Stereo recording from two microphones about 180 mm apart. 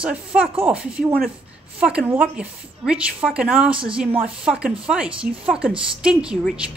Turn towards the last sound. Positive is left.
turn(degrees=-5)  # may be behind; listen again after turning